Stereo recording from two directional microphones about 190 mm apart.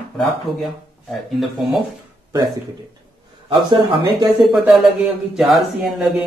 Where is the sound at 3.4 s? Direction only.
25° right (ahead or behind).